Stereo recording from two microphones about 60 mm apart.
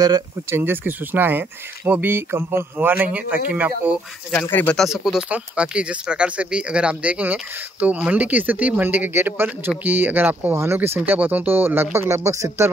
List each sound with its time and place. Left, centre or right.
0.5 s speech: right
4.3 s speech: left
4.8 s speech: centre; by 10.5 s right
10.5 s speech: right
11.0 s speech: right